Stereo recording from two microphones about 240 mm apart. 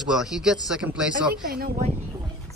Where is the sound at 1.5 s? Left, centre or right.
Right.